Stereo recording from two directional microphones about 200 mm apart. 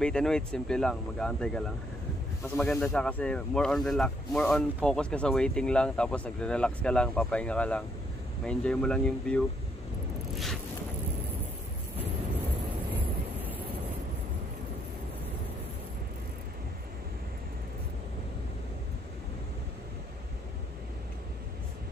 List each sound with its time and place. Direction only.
0.0 s speech: 5° left (ahead or behind)
10.3 s a sound: centre (ahead or behind)
13.4 s vehicle: 10° right (ahead or behind)